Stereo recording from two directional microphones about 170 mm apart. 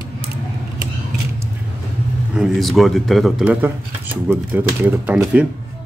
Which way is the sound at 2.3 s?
Centre (ahead or behind).